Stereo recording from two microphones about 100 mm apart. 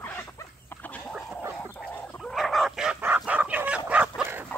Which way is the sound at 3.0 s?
15° right (ahead or behind).